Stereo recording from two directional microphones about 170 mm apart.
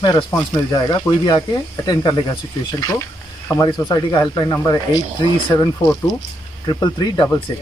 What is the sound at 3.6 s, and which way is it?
Speech, 25° left (ahead or behind).